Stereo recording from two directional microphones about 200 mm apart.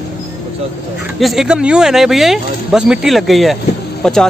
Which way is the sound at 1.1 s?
Centre (ahead or behind).